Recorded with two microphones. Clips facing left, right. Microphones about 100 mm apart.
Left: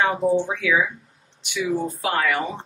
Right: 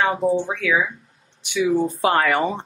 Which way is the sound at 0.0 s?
5° right (ahead or behind).